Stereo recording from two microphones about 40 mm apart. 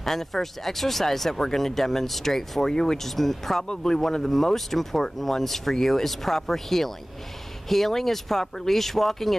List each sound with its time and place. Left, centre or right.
0.0 s speech: centre
3.6 s speech: centre